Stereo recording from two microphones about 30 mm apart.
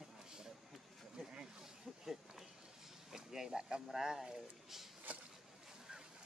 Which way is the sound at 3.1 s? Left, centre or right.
Centre.